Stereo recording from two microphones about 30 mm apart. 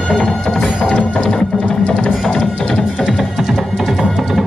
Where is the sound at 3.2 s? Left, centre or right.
Centre.